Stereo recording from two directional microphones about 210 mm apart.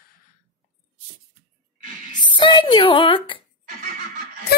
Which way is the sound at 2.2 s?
20° left (ahead or behind).